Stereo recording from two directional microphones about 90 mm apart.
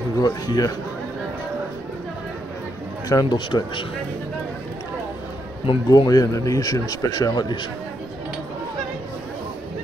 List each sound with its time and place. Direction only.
0.2 s speech: 40° left (ahead or behind)
3.1 s a man's voice: 45° left (ahead or behind)
3.3 s speech: 65° left (ahead or behind)
5.9 s a man's voice: 45° left (ahead or behind)